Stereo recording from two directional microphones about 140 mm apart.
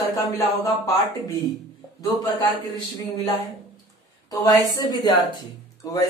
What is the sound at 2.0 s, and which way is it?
A man's voice, 25° left (ahead or behind).